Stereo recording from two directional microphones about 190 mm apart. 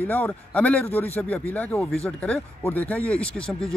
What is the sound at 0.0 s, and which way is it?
Speech, 10° left (ahead or behind).